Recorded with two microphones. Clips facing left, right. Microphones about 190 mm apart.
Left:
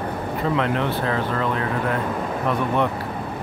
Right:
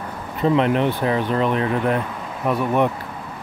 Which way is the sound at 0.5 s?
20° right (ahead or behind).